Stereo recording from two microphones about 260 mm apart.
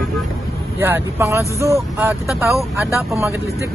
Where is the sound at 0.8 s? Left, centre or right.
Centre.